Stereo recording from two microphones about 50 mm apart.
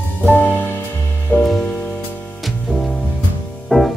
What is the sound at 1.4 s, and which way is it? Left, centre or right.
Music, centre.